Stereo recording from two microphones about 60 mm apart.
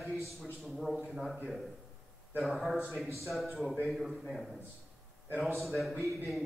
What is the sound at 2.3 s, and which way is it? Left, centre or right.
A man's voice, centre.